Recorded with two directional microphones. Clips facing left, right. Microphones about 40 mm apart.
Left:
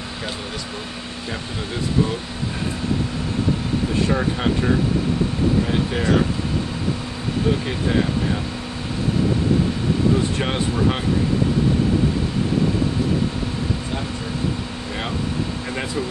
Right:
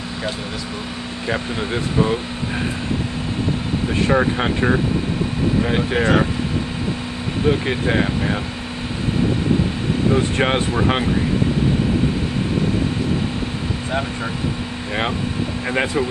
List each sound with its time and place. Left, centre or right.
1.3 s speech: right
4.1 s speech: right
7.4 s speech: right
10.1 s speech: right
15.7 s speech: right